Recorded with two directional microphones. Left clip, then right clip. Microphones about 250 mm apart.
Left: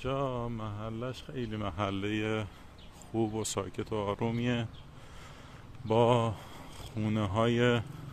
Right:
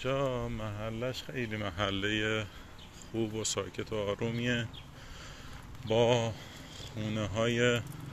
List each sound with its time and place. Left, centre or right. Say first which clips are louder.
0.0 s speech: right 1 dB; centre
5.9 s speech: left 1 dB; left